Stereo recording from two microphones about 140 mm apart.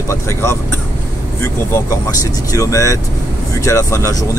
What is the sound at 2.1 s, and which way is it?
Speech, 25° left (ahead or behind).